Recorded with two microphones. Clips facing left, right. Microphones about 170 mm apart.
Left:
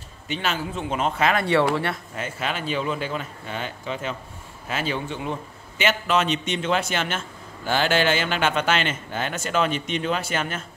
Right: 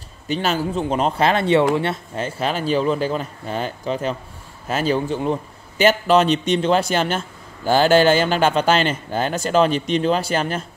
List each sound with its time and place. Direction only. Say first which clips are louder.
0.3 s a man's voice: right 6 dB; 40° right (ahead or behind)